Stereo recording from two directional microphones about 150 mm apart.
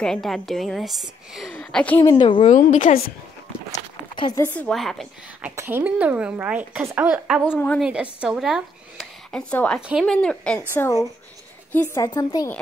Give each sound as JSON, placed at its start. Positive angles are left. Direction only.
{"t": 0.0, "sound": "a woman's voice", "side_deg": 5}
{"t": 2.0, "sound": "speech", "side_deg": 30}
{"t": 2.4, "sound": "a woman's voice", "side_deg": 55}
{"t": 4.4, "sound": "a woman's voice", "side_deg": 10}
{"t": 4.7, "sound": "a woman's voice", "side_deg": 0}
{"t": 5.6, "sound": "a woman's voice", "side_deg": -15}
{"t": 7.5, "sound": "a woman's voice", "side_deg": 10}
{"t": 7.8, "sound": "speech", "side_deg": -5}
{"t": 9.5, "sound": "a woman's voice", "side_deg": 10}
{"t": 9.8, "sound": "a woman's voice", "side_deg": -5}
{"t": 10.1, "sound": "a woman's voice", "side_deg": 5}
{"t": 10.7, "sound": "a woman's voice", "side_deg": 15}